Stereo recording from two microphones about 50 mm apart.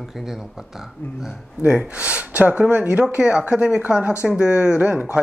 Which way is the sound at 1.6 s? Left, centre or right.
Right.